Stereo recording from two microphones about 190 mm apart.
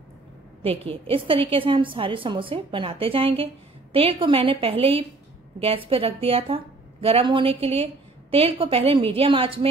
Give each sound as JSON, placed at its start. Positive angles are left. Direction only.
{"t": 0.6, "sound": "a woman's voice", "side_deg": -30}